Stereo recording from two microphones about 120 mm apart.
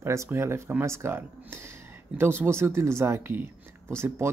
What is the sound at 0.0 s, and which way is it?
Speech, 25° right (ahead or behind).